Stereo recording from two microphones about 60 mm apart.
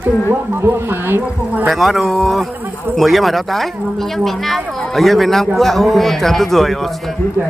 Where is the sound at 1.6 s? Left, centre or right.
Centre.